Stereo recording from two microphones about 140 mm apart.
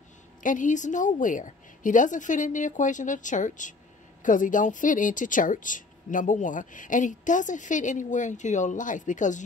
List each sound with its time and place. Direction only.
0.4 s speech: 65° left (ahead or behind)